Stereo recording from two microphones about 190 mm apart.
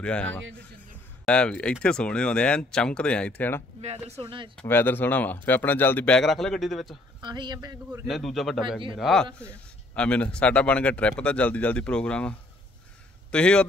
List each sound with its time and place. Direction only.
0.0 s speech: 5° left (ahead or behind)
3.8 s speech: 35° right (ahead or behind)
4.6 s speech: 10° left (ahead or behind)
7.2 s a man's voice: 25° right (ahead or behind)
8.1 s speech: centre (ahead or behind)